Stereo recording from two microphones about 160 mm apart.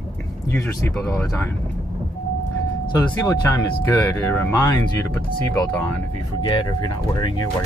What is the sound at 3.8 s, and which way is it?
Speech, 15° left (ahead or behind).